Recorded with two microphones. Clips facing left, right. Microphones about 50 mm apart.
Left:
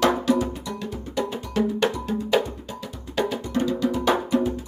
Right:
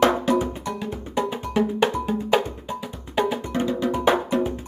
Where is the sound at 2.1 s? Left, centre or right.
Centre.